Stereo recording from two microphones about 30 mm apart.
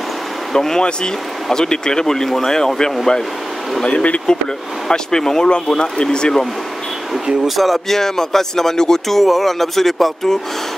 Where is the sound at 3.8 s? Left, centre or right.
Left.